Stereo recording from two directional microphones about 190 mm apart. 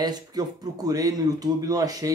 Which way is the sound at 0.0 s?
20° right (ahead or behind).